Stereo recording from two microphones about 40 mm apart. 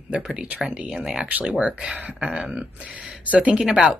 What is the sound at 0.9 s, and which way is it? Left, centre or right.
Speech, centre.